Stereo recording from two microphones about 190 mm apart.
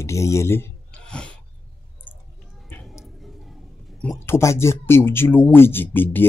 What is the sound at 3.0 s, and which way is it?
Speech, centre (ahead or behind).